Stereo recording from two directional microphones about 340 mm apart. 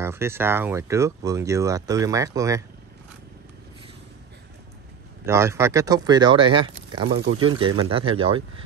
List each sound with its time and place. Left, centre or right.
0.0 s speech: centre
5.2 s speech: centre